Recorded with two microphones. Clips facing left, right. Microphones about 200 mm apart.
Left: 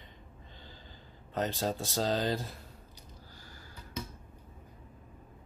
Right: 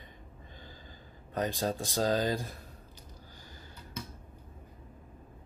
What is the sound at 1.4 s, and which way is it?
Speech, 15° right (ahead or behind).